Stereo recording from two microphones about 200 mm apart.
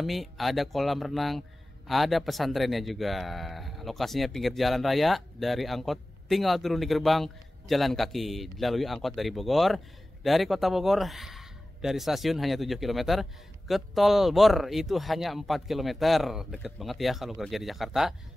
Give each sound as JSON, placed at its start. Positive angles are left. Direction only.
{"t": 0.0, "sound": "speech", "side_deg": 0}